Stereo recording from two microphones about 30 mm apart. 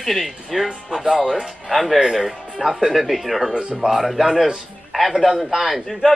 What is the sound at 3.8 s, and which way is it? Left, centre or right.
Speech, right.